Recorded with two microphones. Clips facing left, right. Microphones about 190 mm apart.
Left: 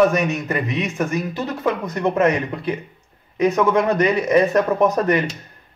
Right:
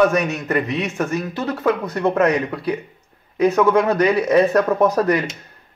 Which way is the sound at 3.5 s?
Centre (ahead or behind).